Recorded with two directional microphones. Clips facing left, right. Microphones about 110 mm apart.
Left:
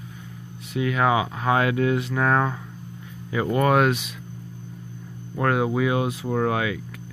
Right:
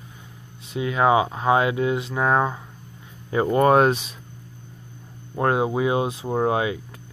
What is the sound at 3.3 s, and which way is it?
Speech, 30° right (ahead or behind).